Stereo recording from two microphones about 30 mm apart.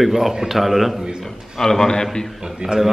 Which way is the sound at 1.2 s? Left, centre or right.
Centre.